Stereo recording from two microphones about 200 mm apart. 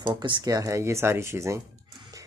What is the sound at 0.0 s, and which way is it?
Speech, 20° right (ahead or behind).